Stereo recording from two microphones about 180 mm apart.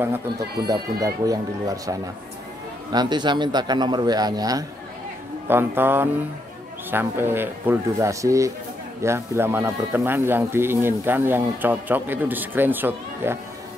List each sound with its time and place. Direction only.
0.0 s a man's voice: 10° right (ahead or behind)